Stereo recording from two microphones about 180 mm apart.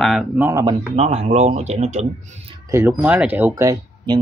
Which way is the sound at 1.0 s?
40° right (ahead or behind).